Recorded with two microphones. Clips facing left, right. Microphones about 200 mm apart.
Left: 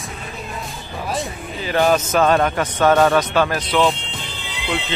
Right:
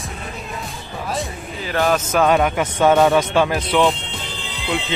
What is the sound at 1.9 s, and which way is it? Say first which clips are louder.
A man's voice: even; centre (ahead or behind).